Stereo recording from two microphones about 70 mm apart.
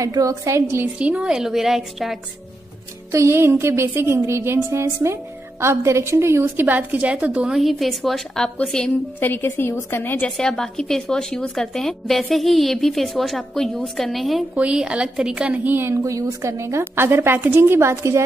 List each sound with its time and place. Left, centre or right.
0.0 s a woman's voice: right
0.9 s a woman's voice: centre
3.1 s a woman's voice: right; by 7.5 s centre
7.5 s a woman's voice: centre
9.2 s a woman's voice: left
10.3 s a woman's voice: centre
14.5 s a woman's voice: centre
15.5 s a woman's voice: right
15.9 s a woman's voice: right
16.7 s a woman's voice: right